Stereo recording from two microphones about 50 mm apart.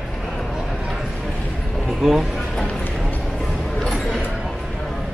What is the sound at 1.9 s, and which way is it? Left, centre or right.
Speech, centre.